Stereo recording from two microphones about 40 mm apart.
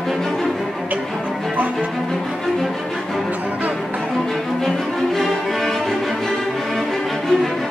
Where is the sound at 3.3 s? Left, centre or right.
Right.